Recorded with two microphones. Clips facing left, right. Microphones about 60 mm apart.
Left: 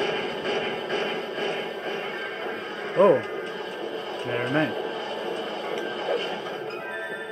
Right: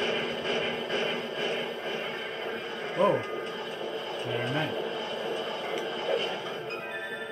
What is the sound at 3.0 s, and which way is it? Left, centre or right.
Speech, left.